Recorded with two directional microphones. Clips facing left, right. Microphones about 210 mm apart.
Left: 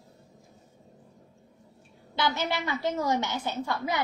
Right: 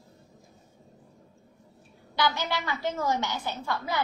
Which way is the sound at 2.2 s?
25° left (ahead or behind).